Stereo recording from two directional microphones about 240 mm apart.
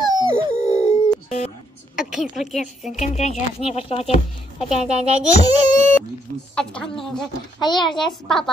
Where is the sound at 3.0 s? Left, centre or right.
Left.